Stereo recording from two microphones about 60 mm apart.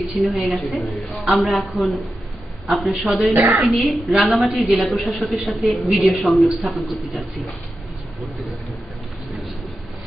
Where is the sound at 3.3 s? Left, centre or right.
Right.